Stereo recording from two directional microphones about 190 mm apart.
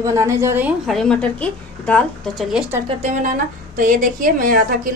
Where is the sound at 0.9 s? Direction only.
5° left (ahead or behind).